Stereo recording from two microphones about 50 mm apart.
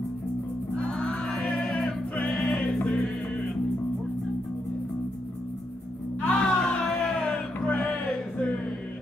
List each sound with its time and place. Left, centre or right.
0.7 s music: centre
1.5 s music: left
2.3 s music: centre
6.2 s music: centre